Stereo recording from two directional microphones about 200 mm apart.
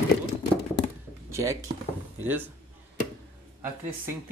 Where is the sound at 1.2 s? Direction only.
15° right (ahead or behind).